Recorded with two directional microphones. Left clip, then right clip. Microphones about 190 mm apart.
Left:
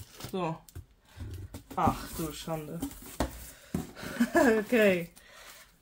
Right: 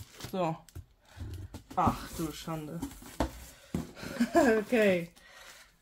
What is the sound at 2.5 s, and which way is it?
Speech, 15° right (ahead or behind).